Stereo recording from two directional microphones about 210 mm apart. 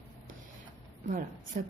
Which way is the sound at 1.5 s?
40° right (ahead or behind).